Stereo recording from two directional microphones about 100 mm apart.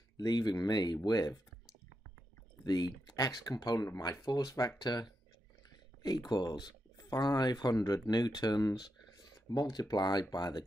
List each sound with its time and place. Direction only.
0.2 s speech: 45° left (ahead or behind)
2.6 s speech: 45° left (ahead or behind)